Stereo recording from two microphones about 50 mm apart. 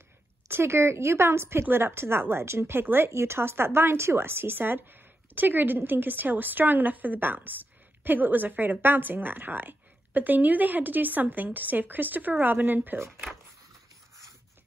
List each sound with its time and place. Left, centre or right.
0.5 s speech: right
3.1 s a woman's voice: right